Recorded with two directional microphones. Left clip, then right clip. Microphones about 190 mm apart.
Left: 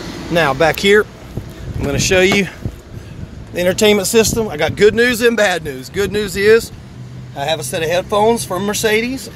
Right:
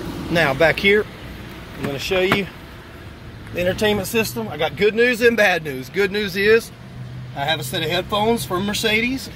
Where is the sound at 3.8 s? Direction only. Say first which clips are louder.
Left 11 dB; 45° left (ahead or behind).